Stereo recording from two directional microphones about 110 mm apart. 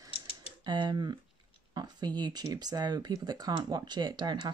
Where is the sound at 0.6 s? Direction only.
40° right (ahead or behind).